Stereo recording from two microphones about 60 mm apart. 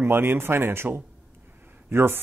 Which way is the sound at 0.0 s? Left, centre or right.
Right.